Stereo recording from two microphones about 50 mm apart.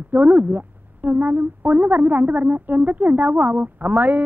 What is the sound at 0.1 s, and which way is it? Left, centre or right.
A man's voice, right.